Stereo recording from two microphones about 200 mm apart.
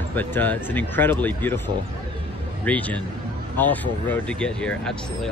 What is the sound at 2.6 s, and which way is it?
A man's voice, 5° left (ahead or behind).